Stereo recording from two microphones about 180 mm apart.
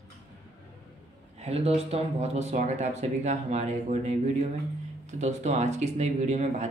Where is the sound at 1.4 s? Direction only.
35° right (ahead or behind).